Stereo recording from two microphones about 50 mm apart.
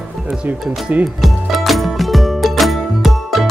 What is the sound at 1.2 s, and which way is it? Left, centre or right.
Music, centre.